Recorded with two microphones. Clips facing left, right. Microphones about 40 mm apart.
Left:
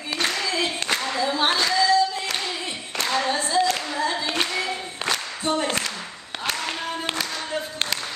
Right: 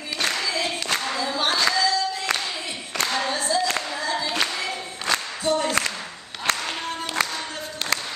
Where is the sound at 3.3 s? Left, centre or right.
Left.